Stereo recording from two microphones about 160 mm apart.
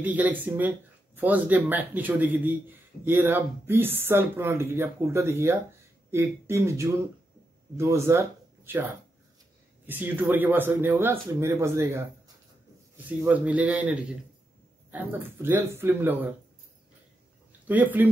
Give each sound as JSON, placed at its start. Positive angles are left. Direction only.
{"t": 0.0, "sound": "speech", "side_deg": -10}
{"t": 9.8, "sound": "speech", "side_deg": -10}
{"t": 13.2, "sound": "speech", "side_deg": -10}
{"t": 17.6, "sound": "speech", "side_deg": -10}